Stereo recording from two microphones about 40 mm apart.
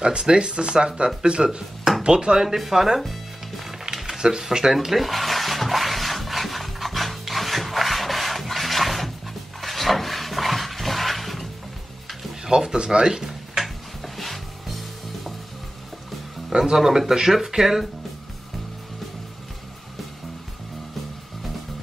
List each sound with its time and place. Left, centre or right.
0.0 s speech: right
2.5 s speech: centre
3.0 s music: centre
3.8 s a sound: centre
12.4 s speech: centre
13.3 s tick-tock: centre
16.5 s speech: centre